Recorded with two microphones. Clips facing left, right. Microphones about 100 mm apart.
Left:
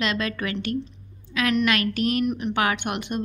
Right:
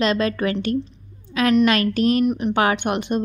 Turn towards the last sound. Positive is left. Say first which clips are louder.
# right 6 dB
turn(degrees=-30)  # may be behind; listen again after turning